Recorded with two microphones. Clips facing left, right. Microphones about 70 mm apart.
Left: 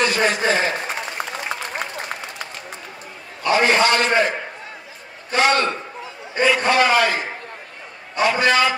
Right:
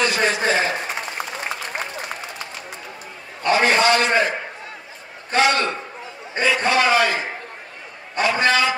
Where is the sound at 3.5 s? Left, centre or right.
Left.